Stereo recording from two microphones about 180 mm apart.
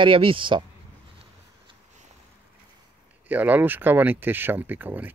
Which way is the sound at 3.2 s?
10° right (ahead or behind).